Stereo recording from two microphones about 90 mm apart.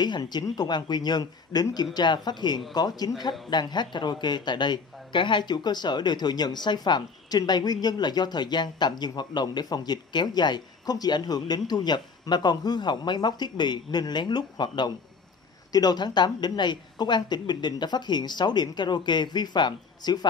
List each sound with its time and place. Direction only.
0.0 s speech: 55° left (ahead or behind)